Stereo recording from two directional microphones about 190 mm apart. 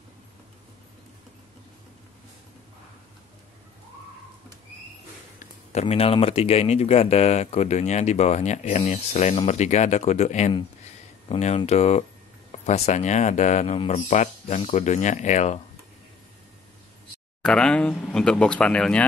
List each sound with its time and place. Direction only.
5.4 s speech: 35° left (ahead or behind)
17.4 s speech: 5° left (ahead or behind)